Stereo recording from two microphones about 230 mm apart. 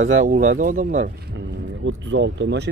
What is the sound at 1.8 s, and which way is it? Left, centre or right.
Speech, right.